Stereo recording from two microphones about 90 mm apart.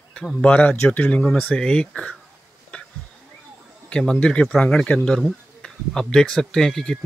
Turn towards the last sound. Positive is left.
turn(degrees=5)  # may be behind; listen again after turning